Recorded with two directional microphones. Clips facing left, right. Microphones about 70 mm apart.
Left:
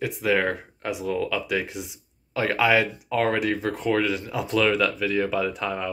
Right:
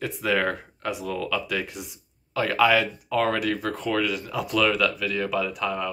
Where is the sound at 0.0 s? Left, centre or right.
Centre.